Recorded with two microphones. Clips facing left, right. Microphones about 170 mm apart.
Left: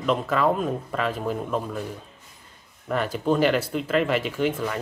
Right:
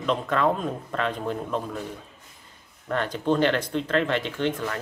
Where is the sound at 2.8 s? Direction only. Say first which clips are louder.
Left 1 dB; 5° left (ahead or behind).